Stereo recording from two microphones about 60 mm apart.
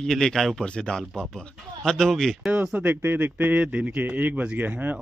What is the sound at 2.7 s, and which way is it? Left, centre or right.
Speech, right.